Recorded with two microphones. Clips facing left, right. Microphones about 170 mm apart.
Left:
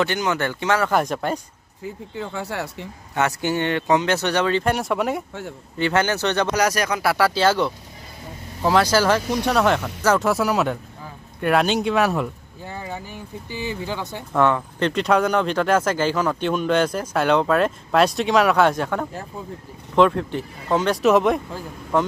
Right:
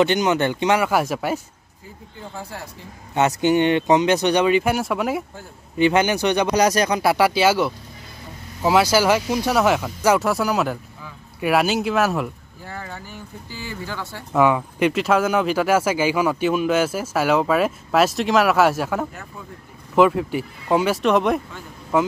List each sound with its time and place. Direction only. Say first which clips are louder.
0.0 s speech: right 4 dB; 20° right (ahead or behind)
2.1 s speech: left 5 dB; 75° left (ahead or behind)
3.2 s speech: right 5 dB; 20° right (ahead or behind)
4.7 s speech: even; centre (ahead or behind)
5.8 s speech: right 3 dB; 15° right (ahead or behind)
12.6 s speech: left 2 dB; 15° left (ahead or behind)
14.3 s speech: right 2 dB; 10° right (ahead or behind)
21.0 s speech: left 2 dB; centre (ahead or behind)